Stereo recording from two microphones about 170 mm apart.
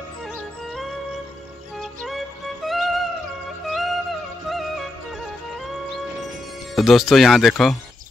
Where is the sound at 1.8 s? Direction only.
Centre (ahead or behind).